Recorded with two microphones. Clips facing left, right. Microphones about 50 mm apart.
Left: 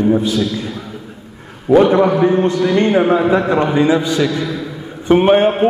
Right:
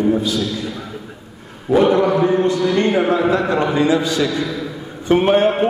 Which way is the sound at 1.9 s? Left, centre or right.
Left.